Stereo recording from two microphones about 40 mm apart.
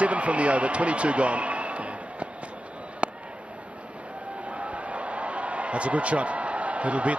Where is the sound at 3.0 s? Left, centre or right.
Right.